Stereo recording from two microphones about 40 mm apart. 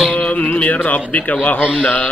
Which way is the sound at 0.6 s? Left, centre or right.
Left.